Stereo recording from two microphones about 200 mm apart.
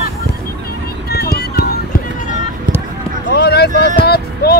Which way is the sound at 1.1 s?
50° left (ahead or behind).